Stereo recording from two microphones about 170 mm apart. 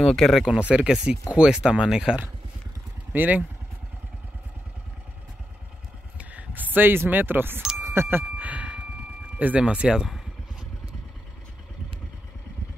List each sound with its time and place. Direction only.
0.0 s speech: centre (ahead or behind)
6.1 s speech: 10° right (ahead or behind)
7.8 s a sound: 15° right (ahead or behind)
9.4 s speech: 10° right (ahead or behind)